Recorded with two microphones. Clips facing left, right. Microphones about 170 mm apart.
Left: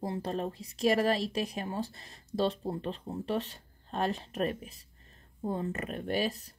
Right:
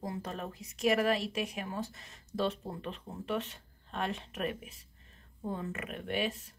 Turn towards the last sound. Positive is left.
turn(degrees=40)  # may be behind; listen again after turning